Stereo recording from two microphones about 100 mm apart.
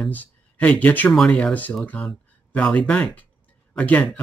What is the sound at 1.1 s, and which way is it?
Speech, 5° left (ahead or behind).